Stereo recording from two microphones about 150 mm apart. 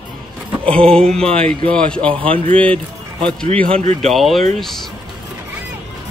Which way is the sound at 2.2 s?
35° right (ahead or behind).